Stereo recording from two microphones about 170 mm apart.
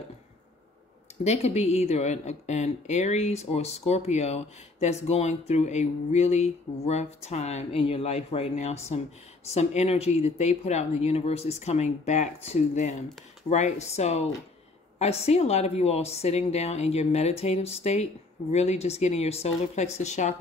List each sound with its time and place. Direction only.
1.2 s speech: 40° left (ahead or behind)